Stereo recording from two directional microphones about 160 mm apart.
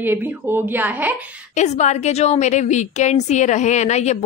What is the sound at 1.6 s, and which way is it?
A woman's voice, 45° left (ahead or behind).